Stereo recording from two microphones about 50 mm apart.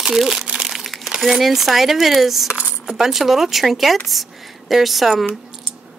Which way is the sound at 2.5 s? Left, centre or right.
Right.